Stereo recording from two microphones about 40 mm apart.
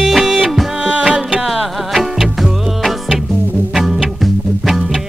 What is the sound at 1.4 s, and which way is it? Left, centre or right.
Music, centre.